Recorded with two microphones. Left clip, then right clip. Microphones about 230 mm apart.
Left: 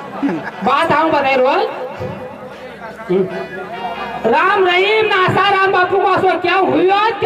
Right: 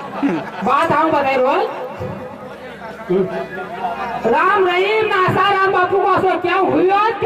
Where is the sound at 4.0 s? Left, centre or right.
Centre.